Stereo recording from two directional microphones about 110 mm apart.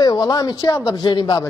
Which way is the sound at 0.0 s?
35° left (ahead or behind).